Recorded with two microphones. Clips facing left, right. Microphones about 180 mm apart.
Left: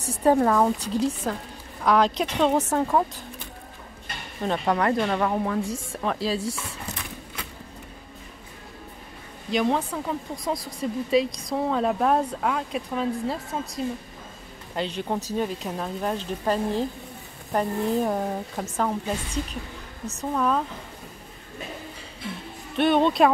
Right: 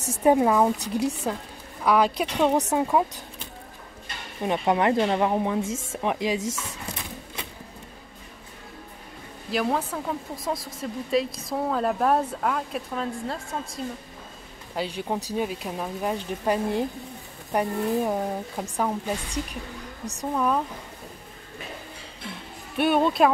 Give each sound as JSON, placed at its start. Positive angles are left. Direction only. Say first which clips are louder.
{"t": 0.2, "sound": "speech", "louder": "even", "side_deg": -10}
{"t": 4.4, "sound": "speech", "louder": "right 1 dB", "side_deg": -20}
{"t": 9.5, "sound": "speech", "louder": "left 2 dB", "side_deg": -5}
{"t": 14.8, "sound": "speech", "louder": "left 1 dB", "side_deg": -10}
{"t": 22.8, "sound": "speech", "louder": "left 1 dB", "side_deg": -5}